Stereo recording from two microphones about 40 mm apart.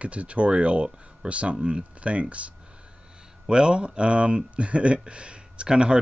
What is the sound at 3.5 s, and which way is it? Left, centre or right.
Speech, right.